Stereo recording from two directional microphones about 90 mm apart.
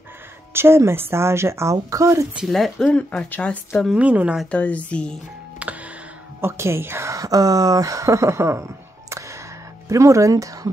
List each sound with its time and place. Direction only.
0.5 s speech: 25° right (ahead or behind)
2.4 s speech: centre (ahead or behind)
3.9 s speech: 15° right (ahead or behind)
4.5 s speech: 15° left (ahead or behind)
5.6 s music: 15° right (ahead or behind)
6.4 s speech: 30° right (ahead or behind)
9.8 s speech: 35° right (ahead or behind)